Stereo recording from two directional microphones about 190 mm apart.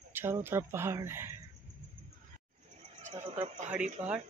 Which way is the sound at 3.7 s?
5° right (ahead or behind).